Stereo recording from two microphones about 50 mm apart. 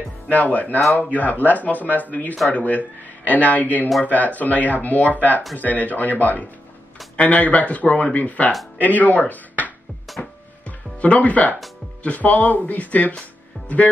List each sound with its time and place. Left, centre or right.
0.3 s speech: left
10.1 s music: centre
11.0 s speech: left